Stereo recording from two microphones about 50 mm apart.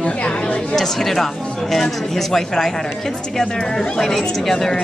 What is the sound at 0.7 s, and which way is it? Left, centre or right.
Speech, centre.